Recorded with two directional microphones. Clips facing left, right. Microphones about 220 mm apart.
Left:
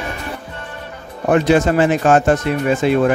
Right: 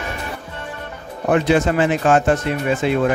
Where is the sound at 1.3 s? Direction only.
45° left (ahead or behind).